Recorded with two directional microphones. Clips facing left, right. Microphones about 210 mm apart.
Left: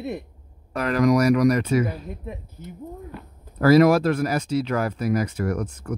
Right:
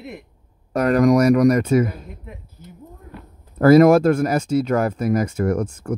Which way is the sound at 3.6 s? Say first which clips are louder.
Right 4 dB; 50° right (ahead or behind).